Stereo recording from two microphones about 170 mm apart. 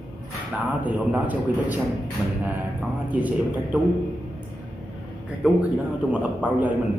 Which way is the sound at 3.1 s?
10° right (ahead or behind).